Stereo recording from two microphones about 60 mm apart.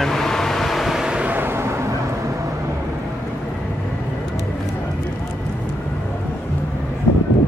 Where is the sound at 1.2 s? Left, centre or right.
Right.